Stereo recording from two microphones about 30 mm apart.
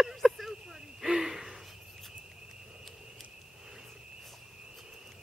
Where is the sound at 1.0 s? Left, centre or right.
Centre.